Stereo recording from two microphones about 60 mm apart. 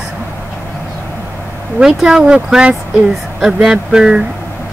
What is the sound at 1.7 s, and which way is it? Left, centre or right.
Speech, centre.